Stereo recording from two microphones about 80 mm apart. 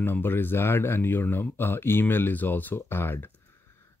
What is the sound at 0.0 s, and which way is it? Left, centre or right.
Speech, left.